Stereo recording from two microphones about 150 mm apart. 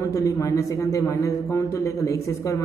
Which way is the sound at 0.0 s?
20° left (ahead or behind).